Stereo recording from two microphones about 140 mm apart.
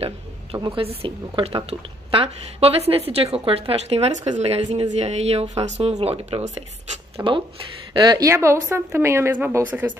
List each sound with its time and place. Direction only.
0.7 s a woman's voice: 40° right (ahead or behind)
7.2 s a woman's voice: 25° right (ahead or behind)